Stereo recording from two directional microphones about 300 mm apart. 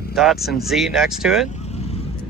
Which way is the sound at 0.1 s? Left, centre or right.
Centre.